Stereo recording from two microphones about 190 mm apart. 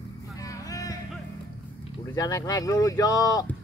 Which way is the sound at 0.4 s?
20° left (ahead or behind).